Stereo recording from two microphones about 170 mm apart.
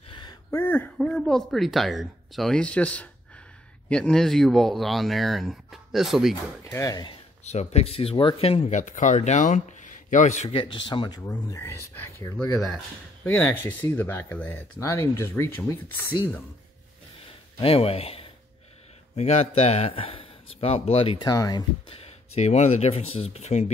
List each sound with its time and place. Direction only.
0.1 s a sound: 25° left (ahead or behind)
0.6 s a man's voice: 10° left (ahead or behind)
6.6 s speech: 20° left (ahead or behind)
7.4 s speech: 40° left (ahead or behind); by 16.2 s 15° left (ahead or behind)
17.6 s a man's voice: 35° left (ahead or behind)
21.2 s speech: 20° left (ahead or behind); by 23.7 s 40° left (ahead or behind)